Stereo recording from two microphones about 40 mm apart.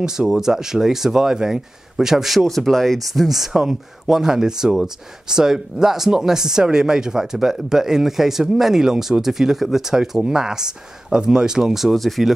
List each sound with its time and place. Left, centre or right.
0.0 s speech: centre
2.4 s speech: centre